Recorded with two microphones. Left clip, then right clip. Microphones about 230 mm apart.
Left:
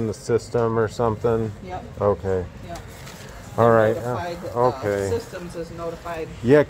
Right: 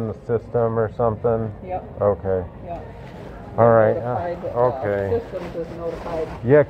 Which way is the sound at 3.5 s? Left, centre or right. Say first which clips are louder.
Right 2 dB; left.